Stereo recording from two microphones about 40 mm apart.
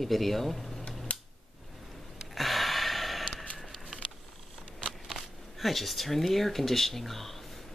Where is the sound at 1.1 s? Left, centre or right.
Left.